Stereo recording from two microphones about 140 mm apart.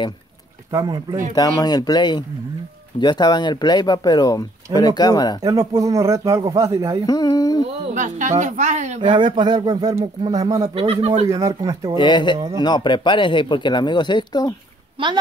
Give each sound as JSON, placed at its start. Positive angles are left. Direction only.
{"t": 0.7, "sound": "speech", "side_deg": -30}
{"t": 1.3, "sound": "speech", "side_deg": 30}
{"t": 5.4, "sound": "speech", "side_deg": -20}
{"t": 7.1, "sound": "mantra", "side_deg": 30}
{"t": 7.8, "sound": "a woman's voice", "side_deg": -60}
{"t": 9.0, "sound": "speech", "side_deg": -35}
{"t": 10.8, "sound": "speech", "side_deg": -45}
{"t": 11.2, "sound": "speech", "side_deg": -25}
{"t": 12.0, "sound": "speech", "side_deg": 35}
{"t": 12.4, "sound": "speech", "side_deg": -30}
{"t": 12.6, "sound": "speech", "side_deg": 30}